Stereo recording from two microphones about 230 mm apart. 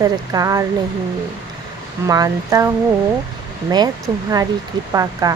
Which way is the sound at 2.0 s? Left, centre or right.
Centre.